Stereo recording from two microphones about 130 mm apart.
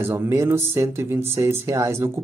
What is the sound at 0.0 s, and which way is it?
Speech, 15° right (ahead or behind).